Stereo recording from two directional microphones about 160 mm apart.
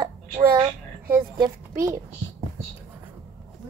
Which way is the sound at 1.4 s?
20° right (ahead or behind).